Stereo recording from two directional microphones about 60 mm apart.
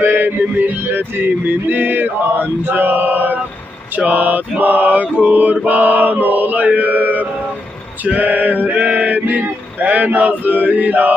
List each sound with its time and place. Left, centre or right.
0.0 s music: right
2.6 s male singing: right